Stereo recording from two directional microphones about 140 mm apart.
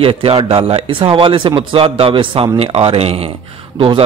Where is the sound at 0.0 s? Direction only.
40° right (ahead or behind).